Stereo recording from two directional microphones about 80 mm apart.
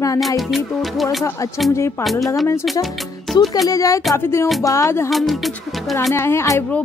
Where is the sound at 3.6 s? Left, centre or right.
Left.